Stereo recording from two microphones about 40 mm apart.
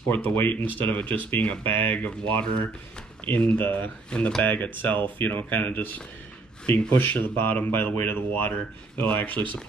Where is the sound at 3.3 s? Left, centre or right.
Left.